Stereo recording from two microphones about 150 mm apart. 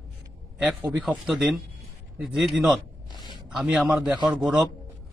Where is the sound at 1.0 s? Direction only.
5° right (ahead or behind).